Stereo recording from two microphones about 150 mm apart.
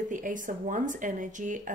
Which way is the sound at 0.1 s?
60° right (ahead or behind).